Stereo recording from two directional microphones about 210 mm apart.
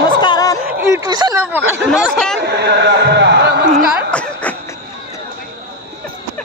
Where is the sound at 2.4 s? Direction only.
50° right (ahead or behind).